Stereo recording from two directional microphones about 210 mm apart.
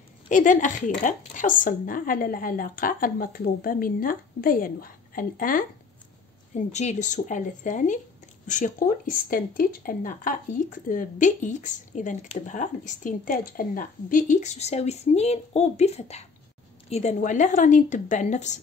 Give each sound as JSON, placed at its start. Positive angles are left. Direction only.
{"t": 0.3, "sound": "speech", "side_deg": 35}